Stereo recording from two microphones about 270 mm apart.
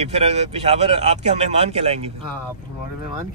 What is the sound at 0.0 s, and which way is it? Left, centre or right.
Speech, right.